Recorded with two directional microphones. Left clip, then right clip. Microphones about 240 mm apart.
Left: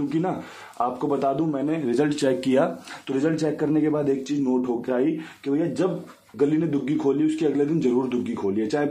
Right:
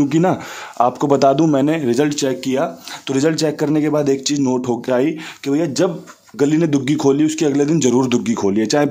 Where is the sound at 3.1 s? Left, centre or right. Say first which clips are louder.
Right 7 dB; right.